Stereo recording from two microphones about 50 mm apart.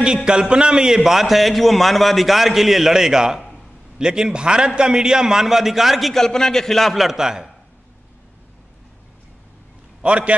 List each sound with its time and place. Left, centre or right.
0.0 s a man's voice: centre
7.1 s a man's voice: centre
10.0 s a man's voice: right